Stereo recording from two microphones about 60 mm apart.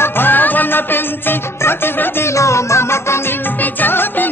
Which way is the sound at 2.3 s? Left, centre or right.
Left.